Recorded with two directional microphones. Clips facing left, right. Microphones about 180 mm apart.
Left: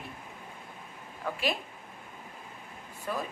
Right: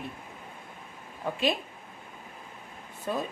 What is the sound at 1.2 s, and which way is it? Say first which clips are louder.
Speech: right 4 dB; 20° right (ahead or behind).